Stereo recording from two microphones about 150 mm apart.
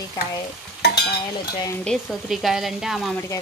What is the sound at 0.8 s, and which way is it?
Stir, 90° left.